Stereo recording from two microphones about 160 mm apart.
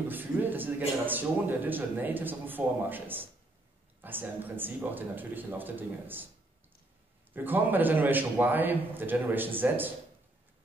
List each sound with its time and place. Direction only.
0.1 s a man's voice: 10° right (ahead or behind)
7.3 s a man's voice: 10° right (ahead or behind)